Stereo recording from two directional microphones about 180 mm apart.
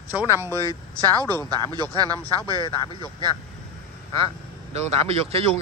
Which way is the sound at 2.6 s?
20° left (ahead or behind).